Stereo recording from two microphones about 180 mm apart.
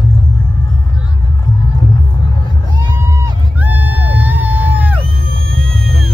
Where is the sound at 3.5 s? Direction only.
10° right (ahead or behind).